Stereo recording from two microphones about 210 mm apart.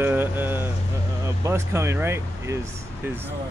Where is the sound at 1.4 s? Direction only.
15° right (ahead or behind).